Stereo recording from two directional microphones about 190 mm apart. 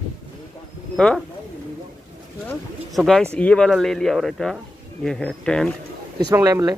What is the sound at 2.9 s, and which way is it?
A man's voice, centre (ahead or behind).